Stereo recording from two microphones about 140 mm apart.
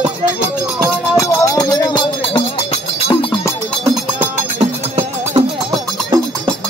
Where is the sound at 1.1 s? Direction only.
20° left (ahead or behind).